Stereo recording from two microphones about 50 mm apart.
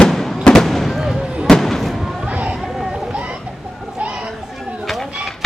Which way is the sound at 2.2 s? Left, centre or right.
Right.